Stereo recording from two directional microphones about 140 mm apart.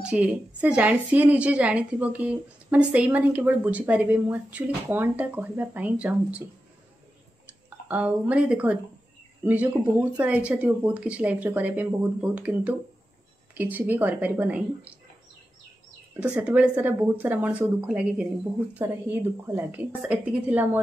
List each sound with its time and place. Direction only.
0.0 s a woman's voice: 10° right (ahead or behind)
7.9 s a woman's voice: 10° right (ahead or behind)
16.2 s a woman's voice: 10° right (ahead or behind)